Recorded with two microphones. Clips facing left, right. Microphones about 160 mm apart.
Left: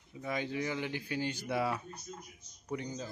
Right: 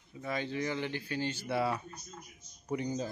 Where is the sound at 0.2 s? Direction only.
10° left (ahead or behind).